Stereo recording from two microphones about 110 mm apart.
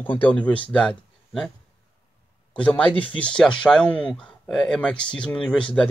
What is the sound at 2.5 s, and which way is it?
Speech, 10° left (ahead or behind).